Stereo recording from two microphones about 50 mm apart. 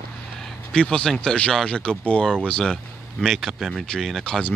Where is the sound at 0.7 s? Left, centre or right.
Centre.